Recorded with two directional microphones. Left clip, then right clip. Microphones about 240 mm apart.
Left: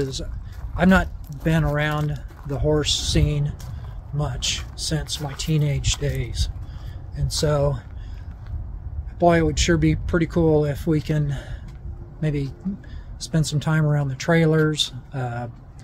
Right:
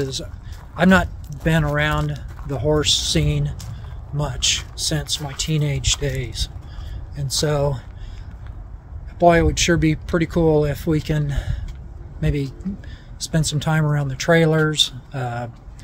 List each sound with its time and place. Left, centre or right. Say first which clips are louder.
0.0 s speech: right 2 dB; centre
9.2 s speech: right 3 dB; centre